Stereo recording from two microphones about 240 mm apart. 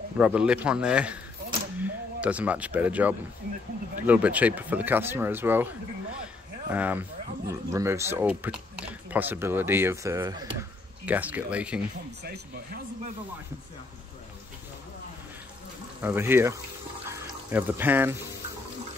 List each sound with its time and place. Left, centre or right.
0.2 s speech: centre
6.7 s speech: centre
12.2 s speech: right
16.0 s speech: centre
17.1 s a sound: centre